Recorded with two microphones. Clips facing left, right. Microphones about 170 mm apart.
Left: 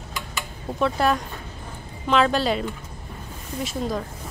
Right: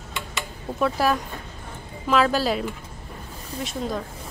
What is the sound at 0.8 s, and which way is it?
A woman's voice, 5° right (ahead or behind).